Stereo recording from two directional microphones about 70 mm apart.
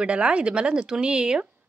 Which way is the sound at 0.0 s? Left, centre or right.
Centre.